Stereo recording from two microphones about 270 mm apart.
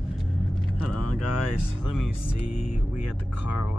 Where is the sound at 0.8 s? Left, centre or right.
Left.